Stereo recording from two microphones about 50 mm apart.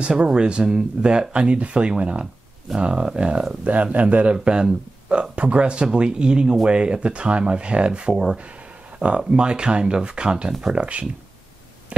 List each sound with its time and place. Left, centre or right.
0.0 s speech: centre
3.6 s speech: right